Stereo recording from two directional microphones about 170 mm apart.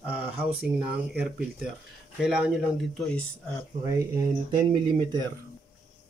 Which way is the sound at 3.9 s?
20° right (ahead or behind).